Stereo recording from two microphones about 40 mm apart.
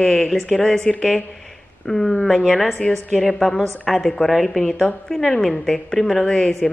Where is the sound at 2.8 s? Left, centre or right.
Left.